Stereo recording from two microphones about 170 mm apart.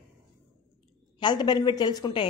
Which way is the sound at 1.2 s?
25° left (ahead or behind).